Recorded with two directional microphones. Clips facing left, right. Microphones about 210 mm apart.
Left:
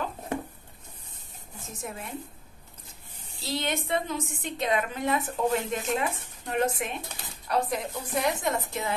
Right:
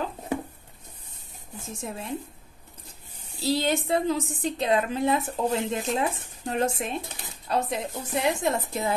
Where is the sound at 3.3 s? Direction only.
35° right (ahead or behind).